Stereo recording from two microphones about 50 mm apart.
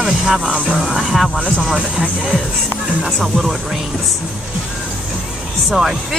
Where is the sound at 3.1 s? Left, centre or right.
Centre.